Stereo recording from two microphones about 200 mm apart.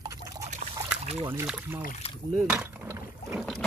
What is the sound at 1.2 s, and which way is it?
Speech, 10° right (ahead or behind).